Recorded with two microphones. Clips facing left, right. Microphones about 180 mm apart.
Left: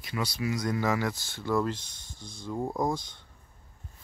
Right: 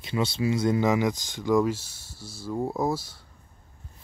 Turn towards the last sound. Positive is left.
turn(degrees=-5)  # may be behind; listen again after turning